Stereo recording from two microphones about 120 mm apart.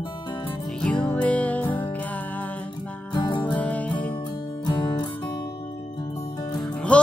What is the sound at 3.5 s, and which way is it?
Music, 10° left (ahead or behind).